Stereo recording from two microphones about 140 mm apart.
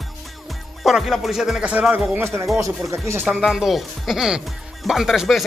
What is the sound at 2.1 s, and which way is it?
Speech, 20° right (ahead or behind).